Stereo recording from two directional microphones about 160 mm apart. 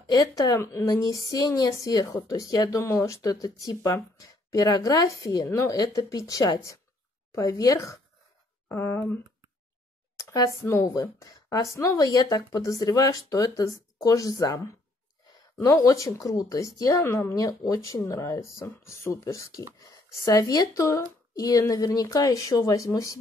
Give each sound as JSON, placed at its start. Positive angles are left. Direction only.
{"t": 0.0, "sound": "a woman's voice", "side_deg": 25}